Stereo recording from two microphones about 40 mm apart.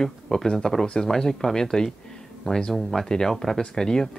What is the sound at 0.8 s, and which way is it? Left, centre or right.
Speech, left.